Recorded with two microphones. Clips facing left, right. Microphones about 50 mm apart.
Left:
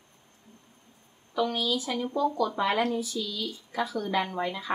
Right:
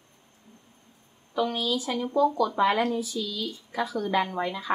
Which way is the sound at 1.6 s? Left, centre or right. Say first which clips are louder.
Right 1 dB; right.